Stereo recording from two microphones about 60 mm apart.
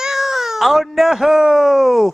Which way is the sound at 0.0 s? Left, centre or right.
Centre.